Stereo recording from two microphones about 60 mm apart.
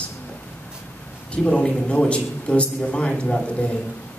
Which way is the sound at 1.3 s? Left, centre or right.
Centre.